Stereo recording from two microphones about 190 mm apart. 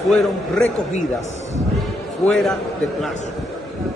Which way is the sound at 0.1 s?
5° left (ahead or behind).